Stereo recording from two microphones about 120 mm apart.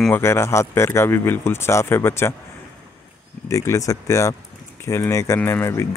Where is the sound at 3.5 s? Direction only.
25° left (ahead or behind).